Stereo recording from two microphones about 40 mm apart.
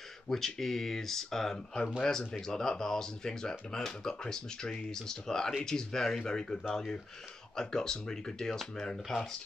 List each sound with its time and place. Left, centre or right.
0.3 s speech: centre